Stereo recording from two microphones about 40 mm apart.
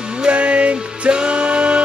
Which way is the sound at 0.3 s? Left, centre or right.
Right.